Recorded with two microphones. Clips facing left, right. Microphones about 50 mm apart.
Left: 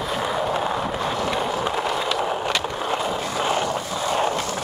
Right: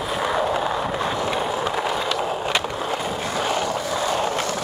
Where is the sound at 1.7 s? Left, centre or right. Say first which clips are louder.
Even; centre.